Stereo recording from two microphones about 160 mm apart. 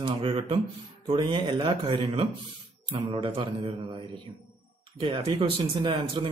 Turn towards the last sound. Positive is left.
turn(degrees=-30)  # may be behind; listen again after turning